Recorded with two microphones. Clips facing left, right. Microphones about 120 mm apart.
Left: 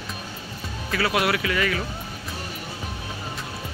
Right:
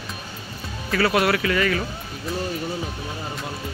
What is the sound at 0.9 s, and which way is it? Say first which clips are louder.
Speech: right 3 dB; 5° left (ahead or behind).